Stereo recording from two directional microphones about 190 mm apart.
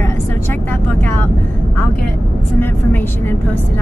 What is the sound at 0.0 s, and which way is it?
Vehicle, 10° left (ahead or behind).